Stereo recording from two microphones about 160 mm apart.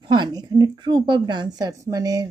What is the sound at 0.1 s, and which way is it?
A woman's voice, 25° right (ahead or behind).